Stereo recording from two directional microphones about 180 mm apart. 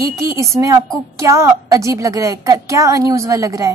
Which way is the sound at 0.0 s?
20° right (ahead or behind).